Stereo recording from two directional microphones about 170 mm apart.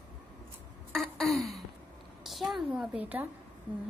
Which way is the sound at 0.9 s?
Centre (ahead or behind).